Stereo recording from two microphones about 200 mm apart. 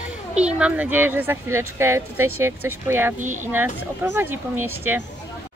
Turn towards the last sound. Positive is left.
turn(degrees=-10)  # may be behind; listen again after turning